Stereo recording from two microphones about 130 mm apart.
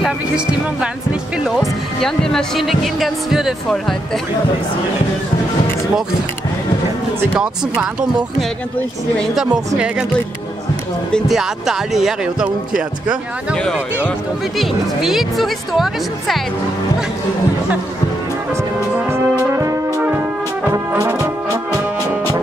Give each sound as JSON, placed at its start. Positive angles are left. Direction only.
{"t": 0.0, "sound": "speech", "side_deg": -5}
{"t": 7.3, "sound": "speech", "side_deg": -5}
{"t": 11.1, "sound": "speech", "side_deg": 0}
{"t": 14.6, "sound": "speech", "side_deg": 0}
{"t": 18.5, "sound": "music", "side_deg": -20}
{"t": 19.5, "sound": "brass instrument", "side_deg": -25}
{"t": 20.0, "sound": "brass instrument", "side_deg": -15}